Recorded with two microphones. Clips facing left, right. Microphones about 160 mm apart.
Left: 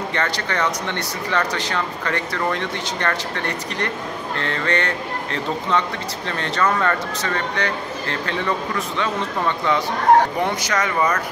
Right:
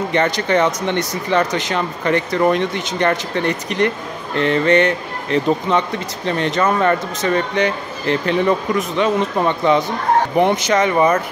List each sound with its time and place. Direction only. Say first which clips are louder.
0.1 s speech: right 10 dB; 20° right (ahead or behind)